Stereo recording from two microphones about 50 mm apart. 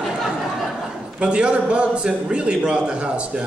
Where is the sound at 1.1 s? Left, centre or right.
Centre.